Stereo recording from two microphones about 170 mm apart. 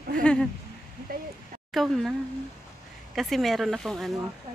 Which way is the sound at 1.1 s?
60° right (ahead or behind).